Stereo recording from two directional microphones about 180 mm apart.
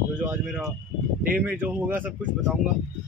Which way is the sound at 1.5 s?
10° right (ahead or behind).